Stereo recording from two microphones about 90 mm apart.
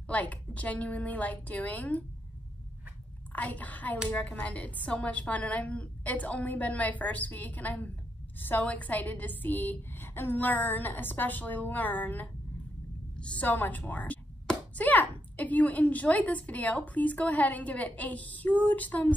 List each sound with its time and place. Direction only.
0.1 s speech: 15° left (ahead or behind)
3.3 s a woman's voice: 15° left (ahead or behind)